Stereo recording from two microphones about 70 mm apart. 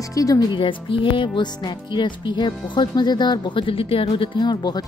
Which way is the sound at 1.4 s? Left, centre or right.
Left.